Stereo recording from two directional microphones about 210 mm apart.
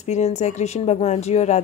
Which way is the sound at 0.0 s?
35° left (ahead or behind).